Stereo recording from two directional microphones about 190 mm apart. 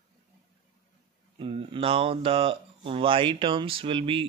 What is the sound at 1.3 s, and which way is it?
Speech, 25° right (ahead or behind).